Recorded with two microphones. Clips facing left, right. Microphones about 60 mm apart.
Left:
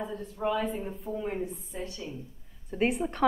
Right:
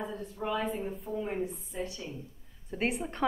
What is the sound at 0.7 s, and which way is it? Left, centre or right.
A woman's voice, centre.